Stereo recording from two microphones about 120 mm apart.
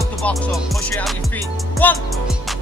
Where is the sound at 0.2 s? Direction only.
10° left (ahead or behind).